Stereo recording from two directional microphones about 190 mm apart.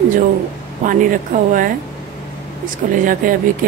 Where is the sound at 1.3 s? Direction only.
45° right (ahead or behind).